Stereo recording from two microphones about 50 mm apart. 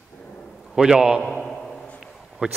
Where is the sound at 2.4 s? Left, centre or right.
Right.